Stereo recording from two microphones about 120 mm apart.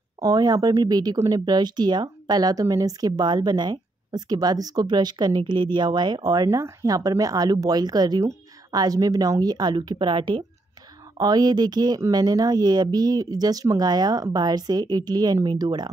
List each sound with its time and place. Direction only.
0.2 s speech: 30° right (ahead or behind)